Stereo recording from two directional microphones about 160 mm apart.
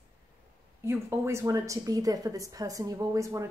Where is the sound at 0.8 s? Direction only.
15° right (ahead or behind).